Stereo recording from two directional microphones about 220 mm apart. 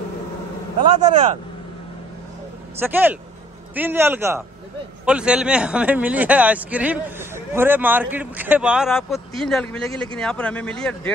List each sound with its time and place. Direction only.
0.9 s speech: 30° right (ahead or behind)
2.8 s speech: 10° right (ahead or behind)